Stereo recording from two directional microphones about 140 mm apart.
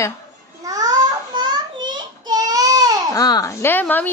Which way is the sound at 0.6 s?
25° right (ahead or behind).